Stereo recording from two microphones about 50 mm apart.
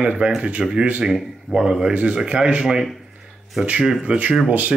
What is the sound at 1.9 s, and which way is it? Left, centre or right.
Speech, right.